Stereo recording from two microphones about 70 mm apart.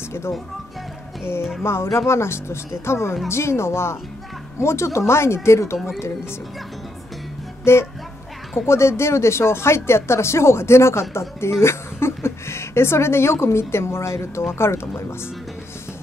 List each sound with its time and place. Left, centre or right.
1.6 s speech: left
7.7 s speech: left